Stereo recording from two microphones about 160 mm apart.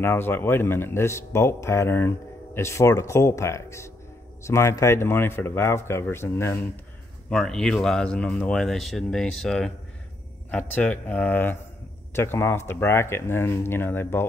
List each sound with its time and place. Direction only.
0.0 s speech: 15° left (ahead or behind)
7.2 s speech: 5° left (ahead or behind)
10.7 s speech: 10° left (ahead or behind)